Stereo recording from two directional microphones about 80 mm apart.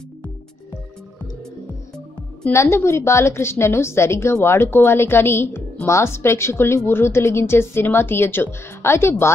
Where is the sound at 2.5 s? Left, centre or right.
Left.